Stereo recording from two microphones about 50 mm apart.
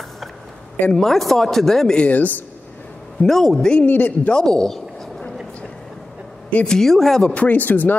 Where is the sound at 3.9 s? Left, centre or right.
Left.